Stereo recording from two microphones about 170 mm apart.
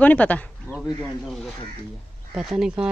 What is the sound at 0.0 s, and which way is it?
Speech, 10° left (ahead or behind).